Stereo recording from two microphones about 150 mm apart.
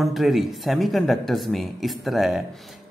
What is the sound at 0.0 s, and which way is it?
Speech, centre (ahead or behind).